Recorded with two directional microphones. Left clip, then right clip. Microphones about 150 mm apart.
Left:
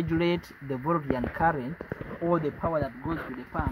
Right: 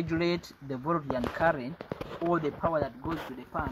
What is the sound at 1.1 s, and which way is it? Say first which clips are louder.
Speech: right 1 dB; 30° left (ahead or behind).